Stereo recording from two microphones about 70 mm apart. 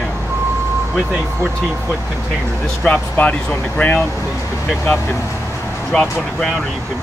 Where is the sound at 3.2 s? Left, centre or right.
Centre.